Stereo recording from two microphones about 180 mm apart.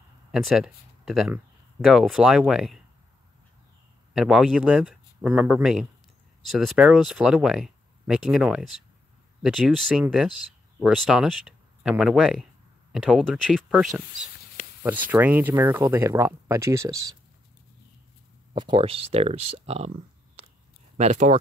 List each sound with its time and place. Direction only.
0.3 s speech: centre (ahead or behind)
4.1 s speech: 5° right (ahead or behind)
18.5 s speech: 25° right (ahead or behind)
21.0 s speech: 40° right (ahead or behind)